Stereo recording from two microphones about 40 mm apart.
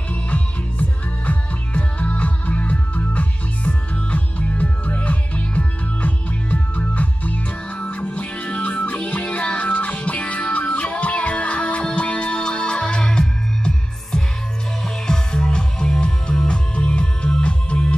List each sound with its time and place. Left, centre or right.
0.1 s music: left